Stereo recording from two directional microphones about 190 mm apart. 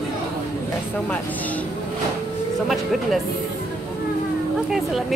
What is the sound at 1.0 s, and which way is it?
Speech, 10° left (ahead or behind).